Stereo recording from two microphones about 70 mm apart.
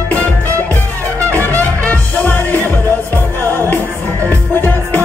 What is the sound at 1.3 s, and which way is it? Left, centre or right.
Music, left.